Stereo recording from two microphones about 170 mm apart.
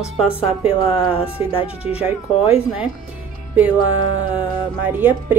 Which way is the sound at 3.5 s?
10° right (ahead or behind).